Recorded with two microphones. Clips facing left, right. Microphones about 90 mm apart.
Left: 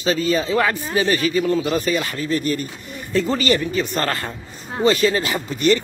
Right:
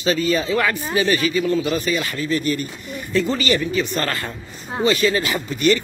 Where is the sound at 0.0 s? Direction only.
35° left (ahead or behind).